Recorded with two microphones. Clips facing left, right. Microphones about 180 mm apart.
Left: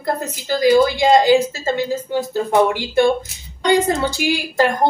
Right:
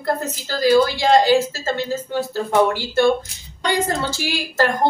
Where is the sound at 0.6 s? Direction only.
15° left (ahead or behind).